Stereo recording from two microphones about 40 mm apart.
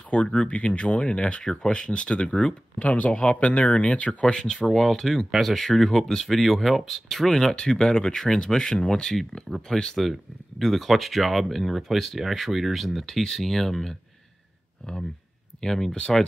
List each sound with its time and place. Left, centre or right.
0.1 s speech: left
1.4 s speech: centre
2.8 s speech: left
3.1 s speech: left
4.6 s speech: centre
10.6 s speech: centre
15.6 s speech: centre